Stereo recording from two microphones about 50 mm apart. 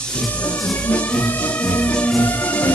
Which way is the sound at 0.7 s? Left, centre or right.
Left.